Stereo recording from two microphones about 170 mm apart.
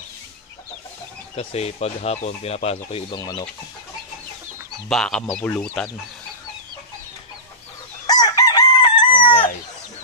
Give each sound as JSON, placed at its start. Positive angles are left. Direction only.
{"t": 1.3, "sound": "speech", "side_deg": 35}
{"t": 4.8, "sound": "speech", "side_deg": 5}
{"t": 8.1, "sound": "chicken", "side_deg": 25}